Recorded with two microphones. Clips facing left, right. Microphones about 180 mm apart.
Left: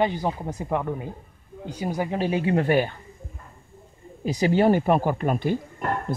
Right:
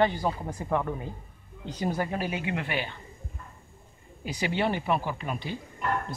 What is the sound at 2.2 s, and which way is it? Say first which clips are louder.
Speech: left 9 dB; 30° left (ahead or behind).